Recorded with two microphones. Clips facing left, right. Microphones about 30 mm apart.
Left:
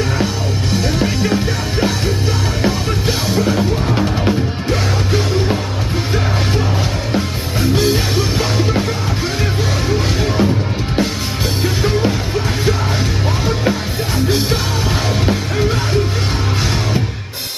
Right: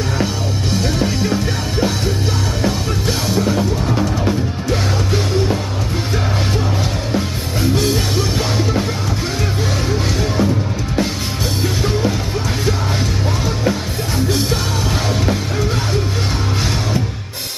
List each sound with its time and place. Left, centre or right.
0.2 s music: centre
3.7 s music: left
4.3 s music: centre
7.1 s music: centre
9.8 s music: centre
11.6 s music: centre
13.7 s music: centre